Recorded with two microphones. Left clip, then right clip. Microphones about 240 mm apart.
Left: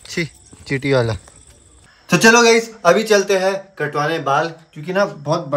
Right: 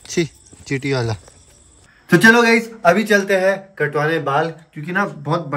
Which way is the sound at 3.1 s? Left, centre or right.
Centre.